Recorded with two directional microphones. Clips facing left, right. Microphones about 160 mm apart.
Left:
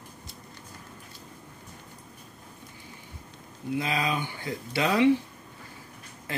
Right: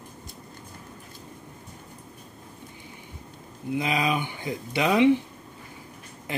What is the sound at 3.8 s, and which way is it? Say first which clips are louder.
Speech: right 3 dB; 15° right (ahead or behind).